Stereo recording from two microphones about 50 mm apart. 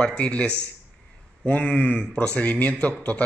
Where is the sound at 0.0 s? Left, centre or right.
Left.